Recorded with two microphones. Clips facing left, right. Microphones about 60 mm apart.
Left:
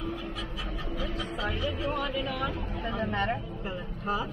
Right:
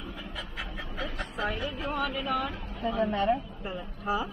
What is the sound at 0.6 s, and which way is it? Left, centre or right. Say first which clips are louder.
Vehicle: right 1 dB; right.